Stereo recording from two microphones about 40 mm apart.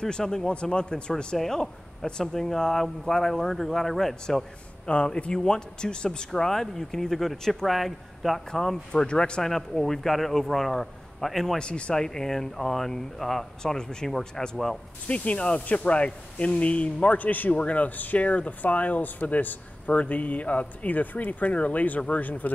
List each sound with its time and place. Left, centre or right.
0.0 s a man's voice: centre
1.4 s speech: centre
4.8 s a man's voice: left
6.3 s speech: centre
8.9 s a man's voice: left
9.4 s speech: centre
11.5 s speech: left
15.0 s speech: left